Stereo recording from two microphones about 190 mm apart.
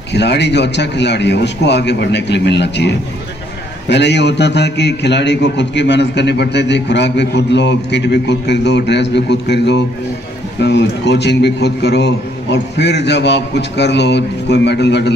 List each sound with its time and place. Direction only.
0.1 s a man's voice: 65° left (ahead or behind)